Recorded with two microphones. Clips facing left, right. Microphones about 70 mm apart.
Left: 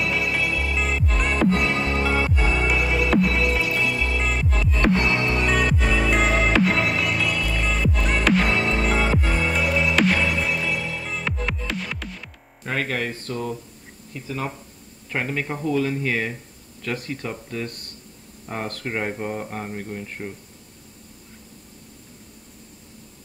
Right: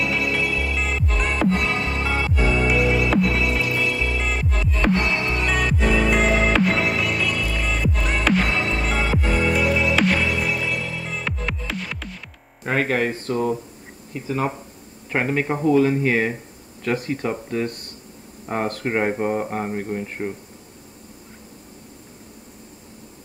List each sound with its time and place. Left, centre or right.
0.0 s music: centre
12.6 s speech: centre